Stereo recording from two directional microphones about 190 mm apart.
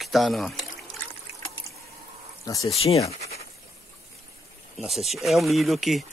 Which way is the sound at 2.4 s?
15° left (ahead or behind).